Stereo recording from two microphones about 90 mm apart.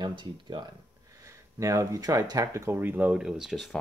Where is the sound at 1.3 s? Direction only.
35° right (ahead or behind); by 3.7 s 5° right (ahead or behind).